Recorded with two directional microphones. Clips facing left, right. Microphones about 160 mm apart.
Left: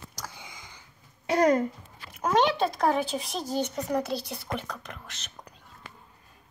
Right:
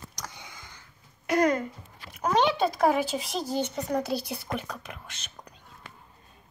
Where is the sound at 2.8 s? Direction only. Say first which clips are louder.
Right 3 dB; 10° right (ahead or behind).